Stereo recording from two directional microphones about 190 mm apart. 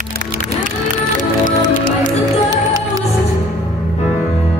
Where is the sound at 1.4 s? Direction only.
45° left (ahead or behind).